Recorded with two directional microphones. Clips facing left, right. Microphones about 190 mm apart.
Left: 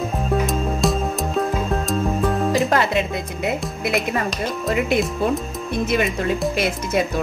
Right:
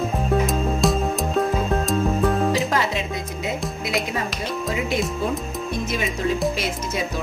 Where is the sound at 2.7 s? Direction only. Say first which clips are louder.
Left 4 dB; 60° left (ahead or behind).